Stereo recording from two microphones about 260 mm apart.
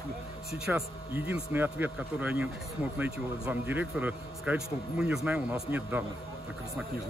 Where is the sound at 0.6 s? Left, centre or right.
Centre.